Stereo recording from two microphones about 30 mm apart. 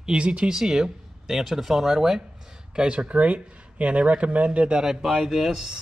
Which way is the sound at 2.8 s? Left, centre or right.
Right.